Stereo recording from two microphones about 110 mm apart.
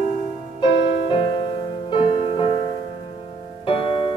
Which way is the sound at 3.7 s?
50° left (ahead or behind).